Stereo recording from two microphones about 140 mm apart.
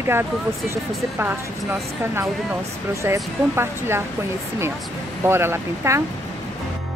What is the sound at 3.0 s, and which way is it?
Speech, 20° right (ahead or behind).